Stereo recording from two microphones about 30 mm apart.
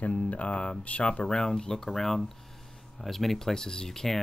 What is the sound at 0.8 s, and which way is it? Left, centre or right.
Speech, left.